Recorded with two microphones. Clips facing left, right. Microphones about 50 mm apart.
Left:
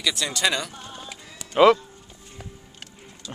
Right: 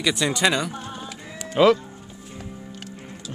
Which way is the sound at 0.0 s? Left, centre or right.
Centre.